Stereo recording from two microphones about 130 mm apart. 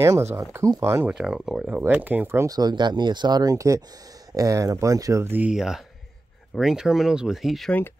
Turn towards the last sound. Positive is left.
turn(degrees=0)  # may be behind; listen again after turning